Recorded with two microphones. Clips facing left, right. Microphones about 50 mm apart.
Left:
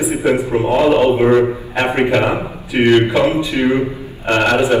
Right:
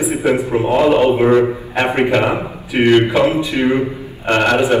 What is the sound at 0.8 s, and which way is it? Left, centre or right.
A man's voice, centre.